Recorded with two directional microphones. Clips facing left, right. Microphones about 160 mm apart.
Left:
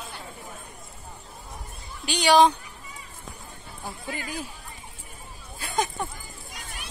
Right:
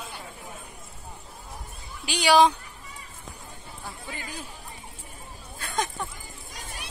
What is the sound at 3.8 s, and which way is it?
Speech, 10° left (ahead or behind).